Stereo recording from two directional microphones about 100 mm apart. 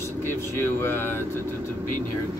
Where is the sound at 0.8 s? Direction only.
20° left (ahead or behind).